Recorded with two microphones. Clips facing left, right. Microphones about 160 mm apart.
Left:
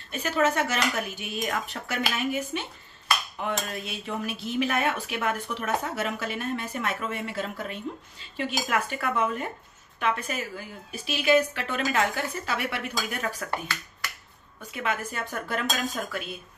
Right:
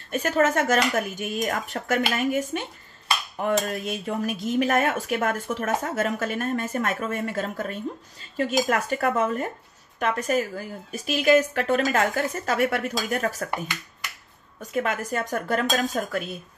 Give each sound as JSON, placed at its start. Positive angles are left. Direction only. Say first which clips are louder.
{"t": 0.1, "sound": "speech", "louder": "right 3 dB", "side_deg": -50}
{"t": 14.6, "sound": "speech", "louder": "right 4 dB", "side_deg": -45}